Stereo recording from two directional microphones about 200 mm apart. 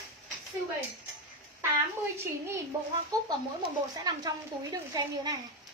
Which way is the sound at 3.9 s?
20° right (ahead or behind).